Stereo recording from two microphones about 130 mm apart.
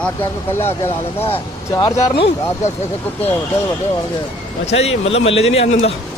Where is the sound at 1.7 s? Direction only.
30° left (ahead or behind).